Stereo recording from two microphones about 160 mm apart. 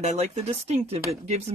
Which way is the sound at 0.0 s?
45° right (ahead or behind).